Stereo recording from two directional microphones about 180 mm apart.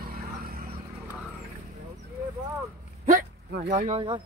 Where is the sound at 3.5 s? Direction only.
70° right (ahead or behind).